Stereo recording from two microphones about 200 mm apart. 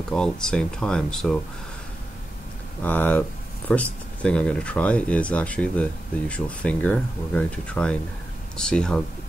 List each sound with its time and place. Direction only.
0.1 s speech: 5° left (ahead or behind)
2.8 s speech: 10° left (ahead or behind)